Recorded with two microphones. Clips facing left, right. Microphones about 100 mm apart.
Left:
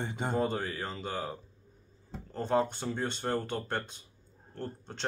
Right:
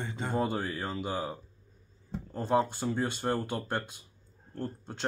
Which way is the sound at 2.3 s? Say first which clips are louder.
Right 1 dB; 10° right (ahead or behind).